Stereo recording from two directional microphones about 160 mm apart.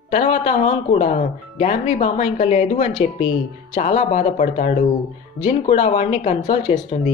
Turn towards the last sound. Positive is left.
turn(degrees=50)  # may be behind; listen again after turning